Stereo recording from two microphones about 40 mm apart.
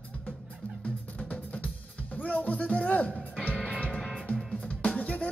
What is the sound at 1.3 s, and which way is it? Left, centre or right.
Drum kit, left.